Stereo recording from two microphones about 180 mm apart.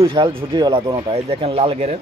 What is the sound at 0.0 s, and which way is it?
Speech, 30° right (ahead or behind).